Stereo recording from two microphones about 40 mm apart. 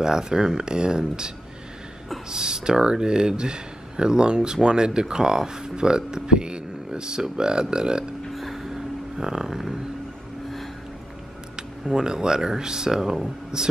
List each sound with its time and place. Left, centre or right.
0.0 s speech: centre
8.3 s a sound: centre
9.2 s speech: centre
11.9 s speech: centre